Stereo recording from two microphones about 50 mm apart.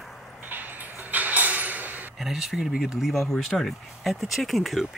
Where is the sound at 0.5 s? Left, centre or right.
Right.